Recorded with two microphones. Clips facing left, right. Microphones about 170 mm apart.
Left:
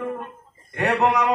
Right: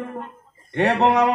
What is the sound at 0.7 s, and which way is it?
Speech, 30° right (ahead or behind).